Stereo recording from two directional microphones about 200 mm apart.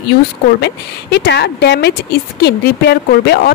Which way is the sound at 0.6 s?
55° left (ahead or behind).